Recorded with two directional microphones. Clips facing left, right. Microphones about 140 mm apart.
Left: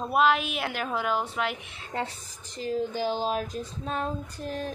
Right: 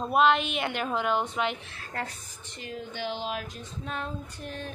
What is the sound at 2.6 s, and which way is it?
Female singing, 35° left (ahead or behind).